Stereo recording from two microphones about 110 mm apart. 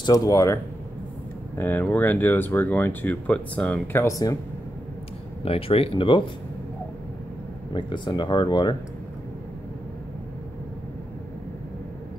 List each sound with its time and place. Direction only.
0.0 s speech: 30° left (ahead or behind)
1.6 s speech: 15° left (ahead or behind)
5.4 s speech: 60° left (ahead or behind)
7.7 s speech: 45° left (ahead or behind)